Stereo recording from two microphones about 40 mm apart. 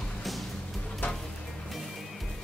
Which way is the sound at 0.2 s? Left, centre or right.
Centre.